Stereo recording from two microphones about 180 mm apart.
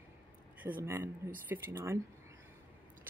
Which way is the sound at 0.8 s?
15° right (ahead or behind).